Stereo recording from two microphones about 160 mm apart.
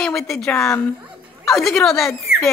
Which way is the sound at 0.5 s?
15° left (ahead or behind).